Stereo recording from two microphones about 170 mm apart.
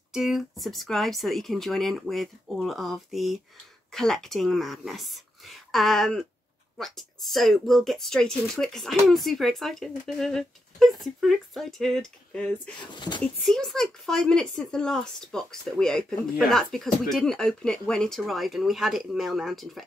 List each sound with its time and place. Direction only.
0.1 s speech: centre (ahead or behind)
12.8 s speech: 25° left (ahead or behind)
13.2 s speech: 5° left (ahead or behind)